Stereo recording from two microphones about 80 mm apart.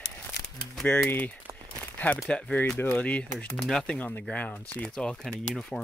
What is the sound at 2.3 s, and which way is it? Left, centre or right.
Speech, centre.